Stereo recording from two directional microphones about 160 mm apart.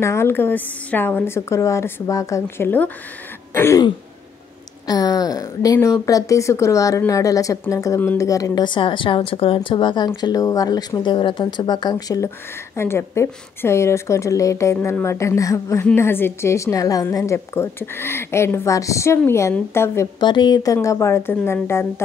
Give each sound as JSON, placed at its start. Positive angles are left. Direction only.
{"t": 0.0, "sound": "a woman's voice", "side_deg": 15}
{"t": 4.8, "sound": "a woman's voice", "side_deg": 25}
{"t": 20.2, "sound": "a woman's voice", "side_deg": 30}